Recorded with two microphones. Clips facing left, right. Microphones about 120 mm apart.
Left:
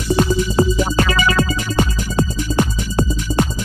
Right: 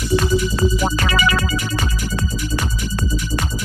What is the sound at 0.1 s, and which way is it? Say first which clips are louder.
Music: left 2 dB; 30° left (ahead or behind).